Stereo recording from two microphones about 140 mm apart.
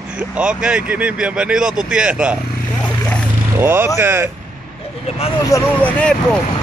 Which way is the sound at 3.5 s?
15° right (ahead or behind).